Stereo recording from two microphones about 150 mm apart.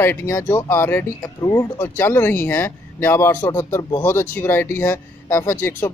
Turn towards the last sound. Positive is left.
turn(degrees=15)  # may be behind; listen again after turning